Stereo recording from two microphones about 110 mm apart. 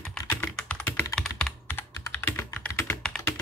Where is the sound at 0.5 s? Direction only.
15° left (ahead or behind).